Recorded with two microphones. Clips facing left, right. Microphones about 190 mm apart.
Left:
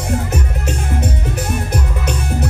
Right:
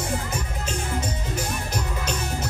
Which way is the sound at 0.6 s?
65° left (ahead or behind).